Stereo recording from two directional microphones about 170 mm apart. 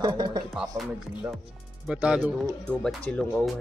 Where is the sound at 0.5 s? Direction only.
Centre (ahead or behind).